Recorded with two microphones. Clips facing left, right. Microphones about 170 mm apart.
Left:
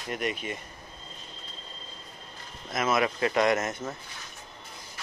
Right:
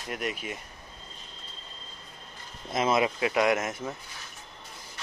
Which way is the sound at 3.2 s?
10° right (ahead or behind).